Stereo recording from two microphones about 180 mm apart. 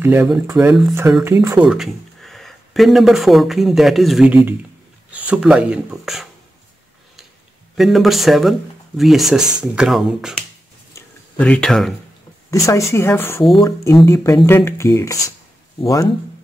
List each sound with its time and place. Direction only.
0.0 s speech: 10° right (ahead or behind)
1.6 s speech: centre (ahead or behind)
7.7 s speech: centre (ahead or behind)
12.4 s speech: 15° left (ahead or behind)